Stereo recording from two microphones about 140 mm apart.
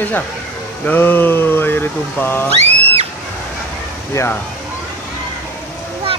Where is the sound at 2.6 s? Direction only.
50° right (ahead or behind).